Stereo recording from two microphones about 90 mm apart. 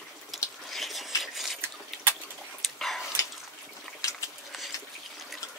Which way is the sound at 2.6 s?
Centre (ahead or behind).